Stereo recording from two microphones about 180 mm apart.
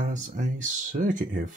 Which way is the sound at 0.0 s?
45° right (ahead or behind).